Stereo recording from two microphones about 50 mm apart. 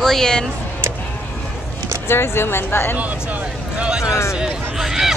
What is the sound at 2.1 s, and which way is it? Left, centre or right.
Speech, left.